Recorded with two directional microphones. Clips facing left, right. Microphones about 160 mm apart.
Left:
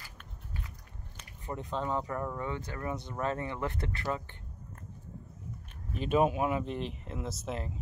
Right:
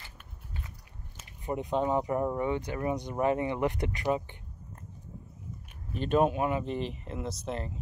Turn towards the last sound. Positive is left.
turn(degrees=0)  # may be behind; listen again after turning